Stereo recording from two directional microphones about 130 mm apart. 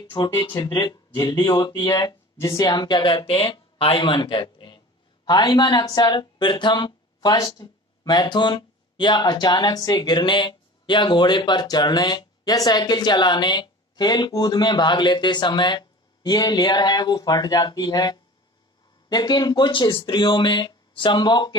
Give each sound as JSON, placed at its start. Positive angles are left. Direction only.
{"t": 0.3, "sound": "speech", "side_deg": 30}